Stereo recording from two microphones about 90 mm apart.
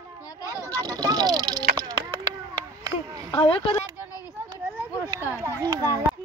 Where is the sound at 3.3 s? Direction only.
90° left.